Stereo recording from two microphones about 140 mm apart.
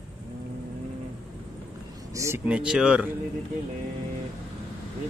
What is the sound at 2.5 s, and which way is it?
Speech, 5° right (ahead or behind).